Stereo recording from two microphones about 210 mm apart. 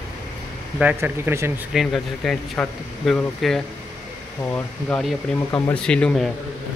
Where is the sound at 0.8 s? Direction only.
10° right (ahead or behind).